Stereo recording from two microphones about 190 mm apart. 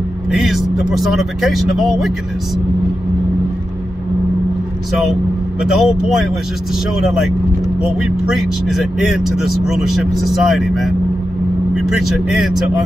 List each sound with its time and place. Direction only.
0.3 s speech: centre (ahead or behind)
5.6 s speech: centre (ahead or behind)
8.6 s speech: centre (ahead or behind)